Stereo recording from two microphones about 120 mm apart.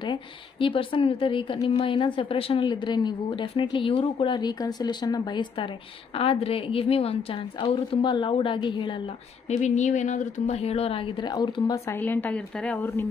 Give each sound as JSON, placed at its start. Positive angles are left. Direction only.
{"t": 0.0, "sound": "a woman's voice", "side_deg": 45}
{"t": 6.1, "sound": "a woman's voice", "side_deg": 50}
{"t": 9.5, "sound": "a woman's voice", "side_deg": 80}
{"t": 11.7, "sound": "a woman's voice", "side_deg": 20}